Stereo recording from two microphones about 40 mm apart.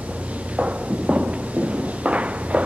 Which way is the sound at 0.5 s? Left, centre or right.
Right.